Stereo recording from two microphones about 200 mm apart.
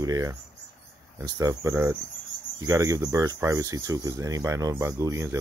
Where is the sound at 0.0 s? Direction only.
15° right (ahead or behind).